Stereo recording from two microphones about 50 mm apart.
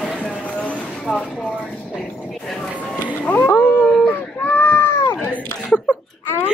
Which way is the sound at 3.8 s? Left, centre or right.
Centre.